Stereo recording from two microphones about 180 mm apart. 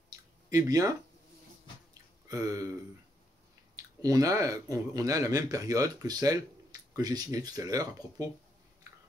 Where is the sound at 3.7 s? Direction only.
20° right (ahead or behind).